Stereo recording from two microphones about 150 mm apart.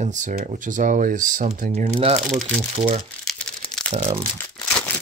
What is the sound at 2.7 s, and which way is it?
Speech, 40° right (ahead or behind).